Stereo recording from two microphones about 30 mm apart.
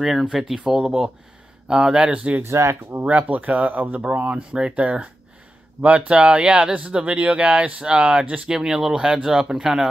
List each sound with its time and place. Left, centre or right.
0.0 s speech: centre
0.7 s speech: right
3.1 s speech: right
4.1 s speech: right
7.1 s speech: right
7.8 s speech: right
8.5 s speech: centre